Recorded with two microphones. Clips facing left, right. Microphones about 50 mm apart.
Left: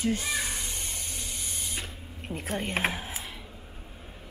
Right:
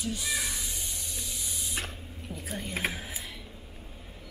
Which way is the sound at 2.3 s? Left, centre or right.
Left.